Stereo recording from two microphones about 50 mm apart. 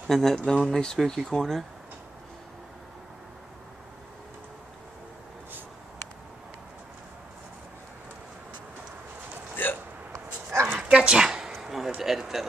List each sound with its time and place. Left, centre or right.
0.1 s speech: centre
10.1 s dog: right
10.8 s dog: centre
11.2 s a sound: centre